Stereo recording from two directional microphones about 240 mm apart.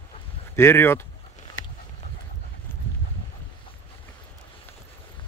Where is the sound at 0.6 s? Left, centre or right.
Centre.